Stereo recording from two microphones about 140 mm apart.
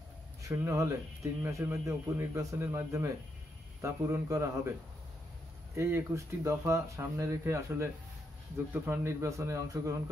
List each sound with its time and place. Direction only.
0.5 s speech: 25° right (ahead or behind)
5.8 s speech: 20° right (ahead or behind)